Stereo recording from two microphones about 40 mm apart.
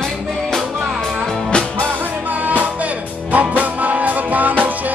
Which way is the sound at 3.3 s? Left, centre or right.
Right.